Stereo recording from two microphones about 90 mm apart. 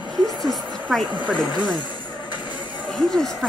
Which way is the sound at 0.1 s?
5° left (ahead or behind).